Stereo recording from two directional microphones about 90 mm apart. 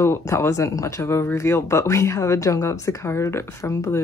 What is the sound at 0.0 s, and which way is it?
Speech, 30° left (ahead or behind).